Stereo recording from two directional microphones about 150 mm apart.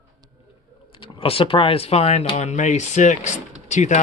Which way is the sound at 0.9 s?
35° left (ahead or behind).